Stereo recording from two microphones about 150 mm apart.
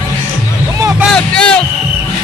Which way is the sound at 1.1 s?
5° left (ahead or behind).